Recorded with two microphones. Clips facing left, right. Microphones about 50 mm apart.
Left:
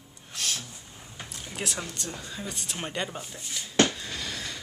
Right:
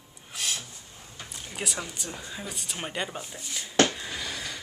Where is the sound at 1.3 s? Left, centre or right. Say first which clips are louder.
Even; centre.